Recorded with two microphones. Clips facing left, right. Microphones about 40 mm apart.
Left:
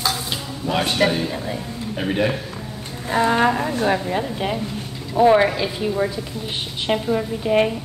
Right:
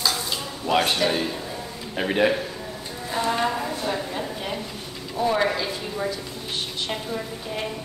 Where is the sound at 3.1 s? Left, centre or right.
Left.